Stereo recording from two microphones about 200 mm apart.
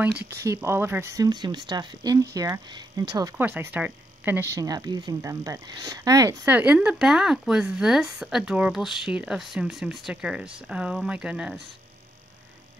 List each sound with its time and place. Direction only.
0.3 s speech: 15° right (ahead or behind)